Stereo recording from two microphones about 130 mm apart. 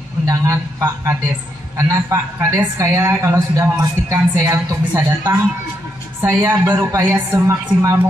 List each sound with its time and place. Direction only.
0.3 s a woman's voice: 25° right (ahead or behind)